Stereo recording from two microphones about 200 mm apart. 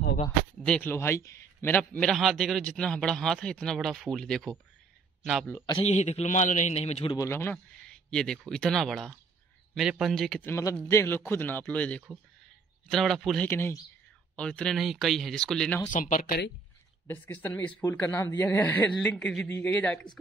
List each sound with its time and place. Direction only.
0.7 s a man's voice: 10° left (ahead or behind)
5.7 s a man's voice: 30° left (ahead or behind)
7.2 s a man's voice: 10° left (ahead or behind)
10.5 s a man's voice: 15° left (ahead or behind)
13.5 s a man's voice: 10° left (ahead or behind)
15.9 s a man's voice: 40° left (ahead or behind)
17.1 s speech: 10° left (ahead or behind)